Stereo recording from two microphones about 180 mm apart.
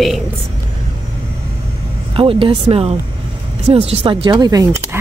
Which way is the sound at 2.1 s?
30° right (ahead or behind).